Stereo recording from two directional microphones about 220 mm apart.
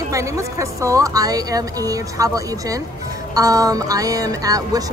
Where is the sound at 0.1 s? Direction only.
15° right (ahead or behind).